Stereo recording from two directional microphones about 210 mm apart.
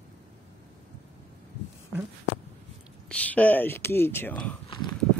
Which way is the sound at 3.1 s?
5° left (ahead or behind).